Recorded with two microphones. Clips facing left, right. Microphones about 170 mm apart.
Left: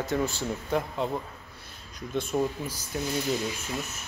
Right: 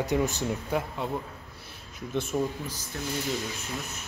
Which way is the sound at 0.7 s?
5° right (ahead or behind).